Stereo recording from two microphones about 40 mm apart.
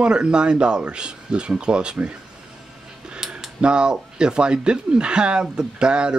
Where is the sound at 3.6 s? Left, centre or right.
Right.